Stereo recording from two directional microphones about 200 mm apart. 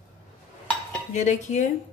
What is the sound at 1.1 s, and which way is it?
Speech, 35° left (ahead or behind).